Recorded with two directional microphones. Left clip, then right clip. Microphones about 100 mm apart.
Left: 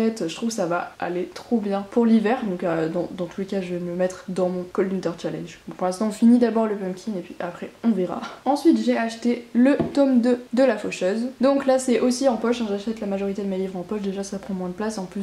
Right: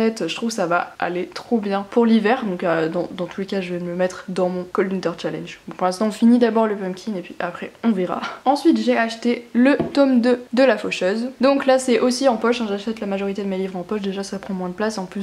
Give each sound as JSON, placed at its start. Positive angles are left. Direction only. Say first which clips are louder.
{"t": 0.0, "sound": "speech", "louder": "right 3 dB", "side_deg": -10}